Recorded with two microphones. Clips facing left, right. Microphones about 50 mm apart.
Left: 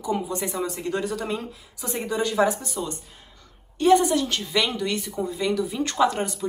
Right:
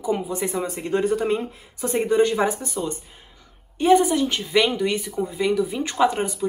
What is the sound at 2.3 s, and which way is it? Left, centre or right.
A woman's voice, centre.